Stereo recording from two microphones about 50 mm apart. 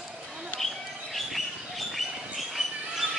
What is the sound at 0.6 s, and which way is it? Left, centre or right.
Bird, centre.